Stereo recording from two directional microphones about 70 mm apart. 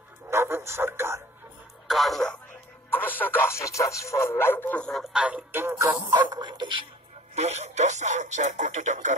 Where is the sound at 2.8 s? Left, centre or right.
Left.